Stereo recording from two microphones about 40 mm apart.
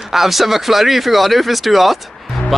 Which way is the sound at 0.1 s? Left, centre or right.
Centre.